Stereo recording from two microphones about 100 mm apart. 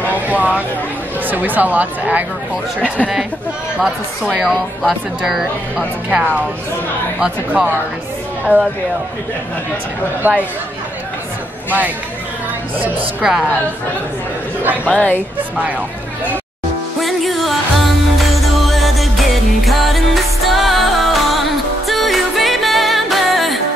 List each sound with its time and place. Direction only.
0.1 s speech: 15° right (ahead or behind)
3.8 s speech: 5° right (ahead or behind)
10.2 s speech: 20° right (ahead or behind)
13.2 s speech: 5° right (ahead or behind)
14.6 s speech: 15° right (ahead or behind)
15.0 s speech: 20° left (ahead or behind)
17.0 s music: centre (ahead or behind)
18.7 s music: centre (ahead or behind)